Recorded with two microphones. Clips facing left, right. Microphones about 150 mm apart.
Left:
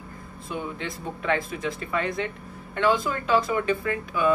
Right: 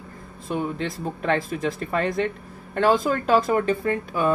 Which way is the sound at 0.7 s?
35° right (ahead or behind).